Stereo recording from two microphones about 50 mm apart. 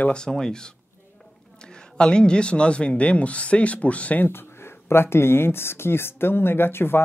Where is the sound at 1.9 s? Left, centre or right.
Centre.